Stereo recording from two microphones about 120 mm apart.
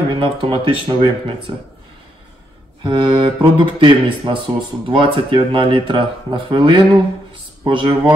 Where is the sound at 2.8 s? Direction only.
40° right (ahead or behind).